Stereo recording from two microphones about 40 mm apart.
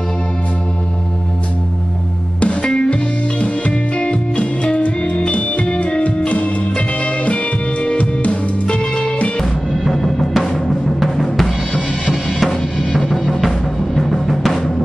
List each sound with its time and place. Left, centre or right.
2.4 s music: left
9.4 s music: centre